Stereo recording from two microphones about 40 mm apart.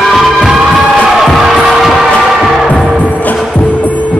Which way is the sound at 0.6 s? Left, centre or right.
Centre.